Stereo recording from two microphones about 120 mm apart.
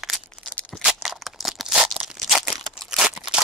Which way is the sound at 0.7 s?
Centre (ahead or behind).